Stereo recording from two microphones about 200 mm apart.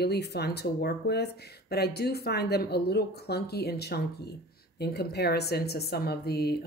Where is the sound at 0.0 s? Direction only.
55° left (ahead or behind).